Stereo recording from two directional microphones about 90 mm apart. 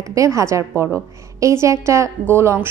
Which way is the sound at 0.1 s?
35° right (ahead or behind).